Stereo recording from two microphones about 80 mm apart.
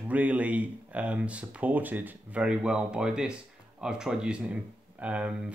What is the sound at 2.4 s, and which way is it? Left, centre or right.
Speech, centre.